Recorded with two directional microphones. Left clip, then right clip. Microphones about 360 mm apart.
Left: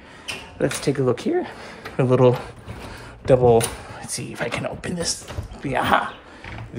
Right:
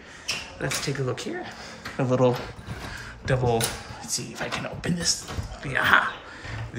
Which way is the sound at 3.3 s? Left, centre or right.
Centre.